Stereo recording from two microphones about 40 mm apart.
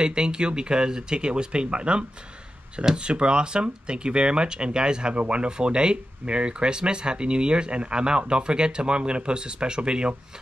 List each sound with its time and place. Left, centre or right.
0.0 s speech: right